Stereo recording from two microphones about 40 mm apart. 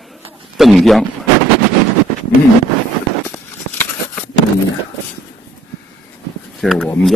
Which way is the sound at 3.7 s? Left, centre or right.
Left.